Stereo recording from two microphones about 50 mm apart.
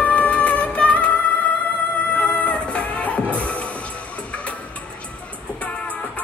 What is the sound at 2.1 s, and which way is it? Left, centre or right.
Music, left.